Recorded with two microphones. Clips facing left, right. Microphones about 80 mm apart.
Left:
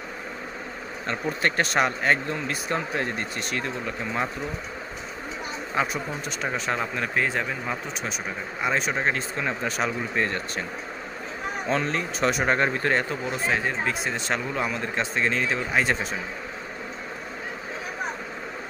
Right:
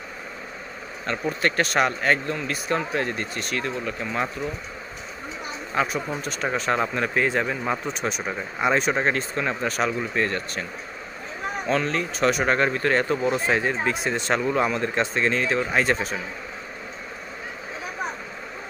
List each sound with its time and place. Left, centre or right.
1.4 s speech: centre
5.8 s speech: centre
8.5 s speech: centre
11.6 s speech: left
13.1 s speech: centre